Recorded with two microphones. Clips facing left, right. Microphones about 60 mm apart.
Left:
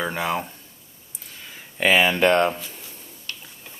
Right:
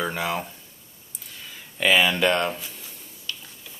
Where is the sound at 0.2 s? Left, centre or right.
Centre.